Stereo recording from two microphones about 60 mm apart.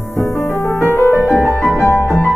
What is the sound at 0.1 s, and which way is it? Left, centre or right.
Music, left.